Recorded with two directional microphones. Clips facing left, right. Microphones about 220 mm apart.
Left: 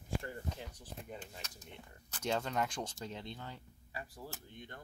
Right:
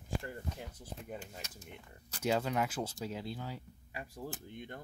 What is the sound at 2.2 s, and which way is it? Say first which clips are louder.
Speech: right 3 dB; 5° right (ahead or behind).